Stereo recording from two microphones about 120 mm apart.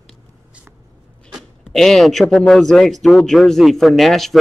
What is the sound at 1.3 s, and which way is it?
Speech, 5° left (ahead or behind).